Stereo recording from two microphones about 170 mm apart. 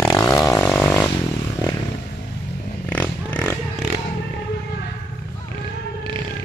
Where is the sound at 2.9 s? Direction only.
10° left (ahead or behind).